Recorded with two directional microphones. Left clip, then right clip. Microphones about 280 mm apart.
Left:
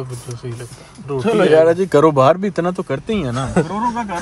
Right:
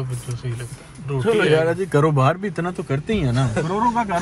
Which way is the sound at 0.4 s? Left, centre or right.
Centre.